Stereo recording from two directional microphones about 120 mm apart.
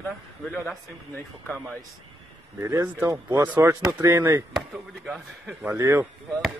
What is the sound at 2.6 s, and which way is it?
Speech, 25° right (ahead or behind).